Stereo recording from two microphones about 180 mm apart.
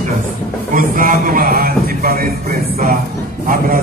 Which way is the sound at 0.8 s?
50° right (ahead or behind).